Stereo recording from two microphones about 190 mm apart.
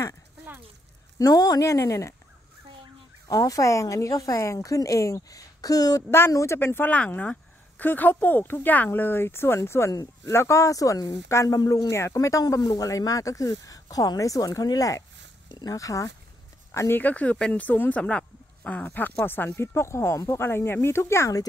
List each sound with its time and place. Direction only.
1.1 s speech: 20° left (ahead or behind)
3.3 s speech: 20° left (ahead or behind)